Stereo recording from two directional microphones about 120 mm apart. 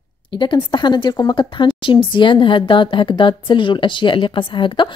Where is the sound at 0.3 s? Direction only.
40° left (ahead or behind).